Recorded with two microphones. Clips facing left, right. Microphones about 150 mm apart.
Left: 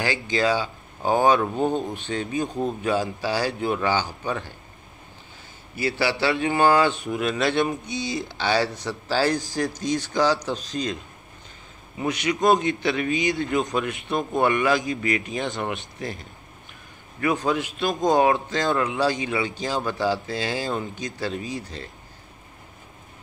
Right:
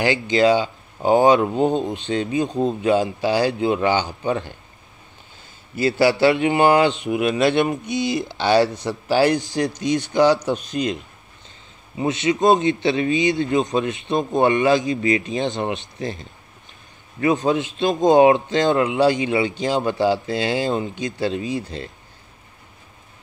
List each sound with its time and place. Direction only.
0.0 s speech: 25° right (ahead or behind)
5.8 s speech: 25° right (ahead or behind)
7.6 s speech: 60° right (ahead or behind)
8.4 s speech: 20° right (ahead or behind)
12.0 s speech: 25° right (ahead or behind)